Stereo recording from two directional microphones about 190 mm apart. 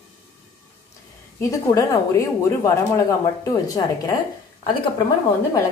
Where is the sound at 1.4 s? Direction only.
15° left (ahead or behind).